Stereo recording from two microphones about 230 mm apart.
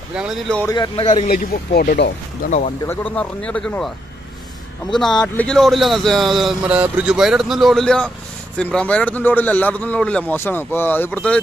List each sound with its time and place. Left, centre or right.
0.1 s speech: centre
0.7 s speech: centre
1.3 s speech: left
2.9 s speech: centre
5.2 s speech: centre